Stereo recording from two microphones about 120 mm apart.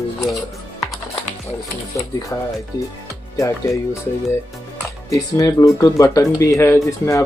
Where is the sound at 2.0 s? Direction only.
30° left (ahead or behind).